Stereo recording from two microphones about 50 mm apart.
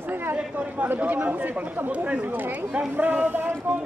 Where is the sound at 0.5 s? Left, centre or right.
Right.